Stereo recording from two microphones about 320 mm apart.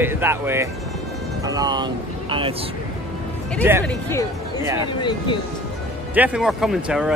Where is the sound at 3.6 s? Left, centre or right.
Centre.